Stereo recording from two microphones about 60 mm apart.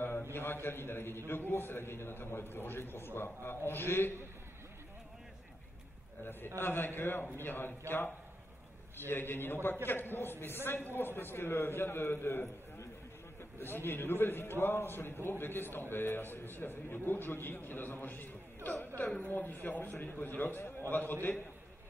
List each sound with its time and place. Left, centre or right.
0.0 s a man's voice: left
6.2 s a man's voice: left
9.0 s a man's voice: left